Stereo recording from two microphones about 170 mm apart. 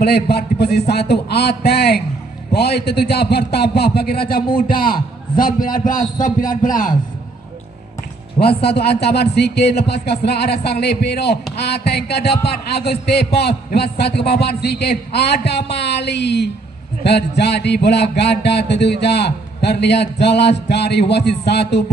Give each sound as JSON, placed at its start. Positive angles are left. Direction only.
{"t": 0.0, "sound": "a man's voice", "side_deg": 70}
{"t": 8.6, "sound": "a man's voice", "side_deg": 75}